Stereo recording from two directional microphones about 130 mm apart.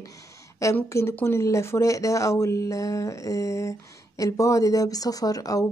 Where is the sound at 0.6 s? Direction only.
20° left (ahead or behind).